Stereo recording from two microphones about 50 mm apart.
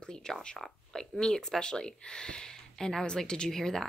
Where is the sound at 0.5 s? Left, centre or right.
Centre.